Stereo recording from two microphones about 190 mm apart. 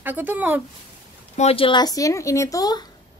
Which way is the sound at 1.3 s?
30° left (ahead or behind).